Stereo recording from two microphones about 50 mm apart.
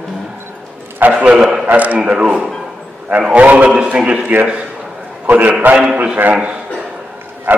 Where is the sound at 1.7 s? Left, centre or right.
Right.